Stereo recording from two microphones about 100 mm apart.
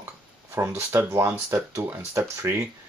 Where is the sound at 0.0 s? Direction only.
25° right (ahead or behind).